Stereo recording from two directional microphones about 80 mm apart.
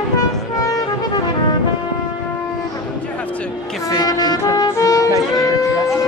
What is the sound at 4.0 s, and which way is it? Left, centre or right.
Music, left.